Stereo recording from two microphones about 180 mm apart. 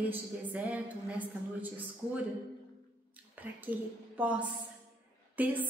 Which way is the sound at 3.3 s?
10° right (ahead or behind).